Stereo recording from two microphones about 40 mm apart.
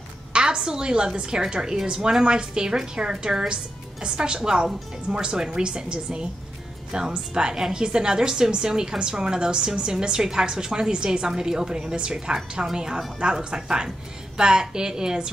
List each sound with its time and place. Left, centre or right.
0.3 s a woman's voice: right